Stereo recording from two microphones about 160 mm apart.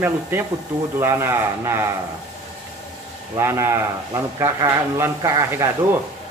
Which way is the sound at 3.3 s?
15° right (ahead or behind).